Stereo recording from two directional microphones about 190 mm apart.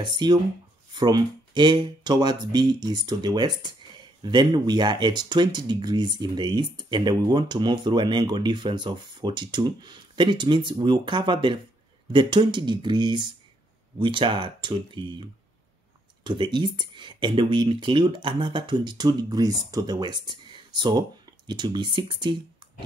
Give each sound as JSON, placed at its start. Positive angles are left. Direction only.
{"t": 0.0, "sound": "speech", "side_deg": -25}
{"t": 16.3, "sound": "speech", "side_deg": -25}